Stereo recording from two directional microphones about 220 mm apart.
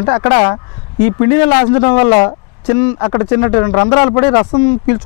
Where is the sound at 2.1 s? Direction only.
20° left (ahead or behind).